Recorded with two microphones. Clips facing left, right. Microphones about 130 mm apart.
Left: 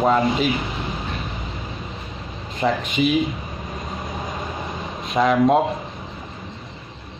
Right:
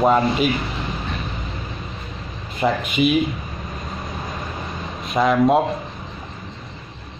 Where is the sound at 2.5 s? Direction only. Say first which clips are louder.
Right 1 dB; 10° right (ahead or behind).